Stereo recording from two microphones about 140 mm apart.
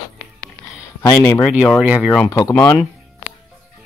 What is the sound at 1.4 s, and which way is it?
Speech, 10° left (ahead or behind).